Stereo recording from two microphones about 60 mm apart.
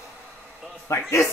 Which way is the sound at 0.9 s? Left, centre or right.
Left.